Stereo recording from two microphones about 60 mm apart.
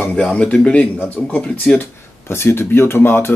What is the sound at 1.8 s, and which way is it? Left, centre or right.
Speech, left.